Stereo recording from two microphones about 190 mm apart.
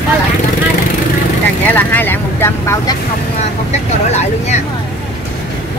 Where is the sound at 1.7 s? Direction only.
10° left (ahead or behind).